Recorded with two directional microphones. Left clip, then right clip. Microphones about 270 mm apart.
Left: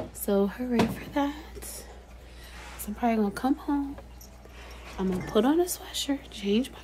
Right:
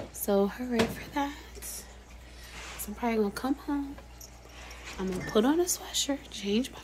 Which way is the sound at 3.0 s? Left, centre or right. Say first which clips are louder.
Left 2 dB; centre.